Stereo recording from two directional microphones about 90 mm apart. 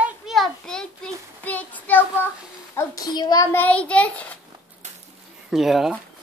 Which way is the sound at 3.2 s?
50° left (ahead or behind).